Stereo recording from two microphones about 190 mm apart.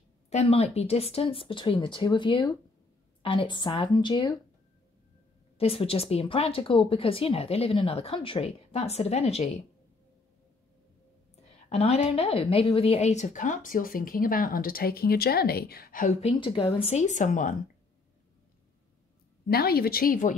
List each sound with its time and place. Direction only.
0.3 s speech: 35° left (ahead or behind)
5.6 s a woman's voice: 30° left (ahead or behind)
11.7 s a woman's voice: 35° left (ahead or behind)
19.4 s a woman's voice: 55° left (ahead or behind)